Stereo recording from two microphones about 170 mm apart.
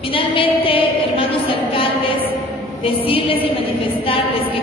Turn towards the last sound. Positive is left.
turn(degrees=30)  # may be behind; listen again after turning